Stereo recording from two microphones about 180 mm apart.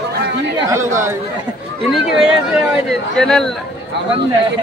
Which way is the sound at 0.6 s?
15° right (ahead or behind).